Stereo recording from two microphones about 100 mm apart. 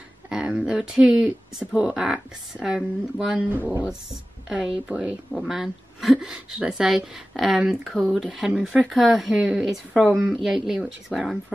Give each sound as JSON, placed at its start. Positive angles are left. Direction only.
{"t": 0.3, "sound": "a sound", "side_deg": -10}
{"t": 2.0, "sound": "a woman's voice", "side_deg": -5}
{"t": 8.7, "sound": "a woman's voice", "side_deg": 5}
{"t": 10.4, "sound": "a woman's voice", "side_deg": -5}